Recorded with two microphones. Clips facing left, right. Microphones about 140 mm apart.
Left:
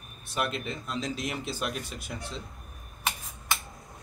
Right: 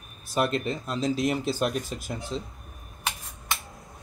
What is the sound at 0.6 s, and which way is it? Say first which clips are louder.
Speech: right 5 dB; centre (ahead or behind).